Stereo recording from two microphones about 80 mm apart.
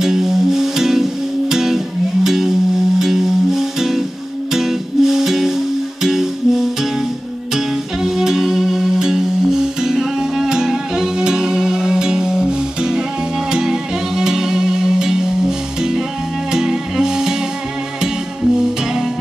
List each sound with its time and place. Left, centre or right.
0.0 s music: centre